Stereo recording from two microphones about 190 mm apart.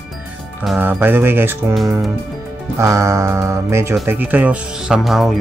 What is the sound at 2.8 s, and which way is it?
Speech, 15° right (ahead or behind).